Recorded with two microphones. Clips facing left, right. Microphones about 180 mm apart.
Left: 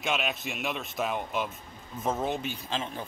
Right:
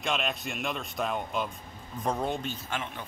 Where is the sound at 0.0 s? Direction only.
Centre (ahead or behind).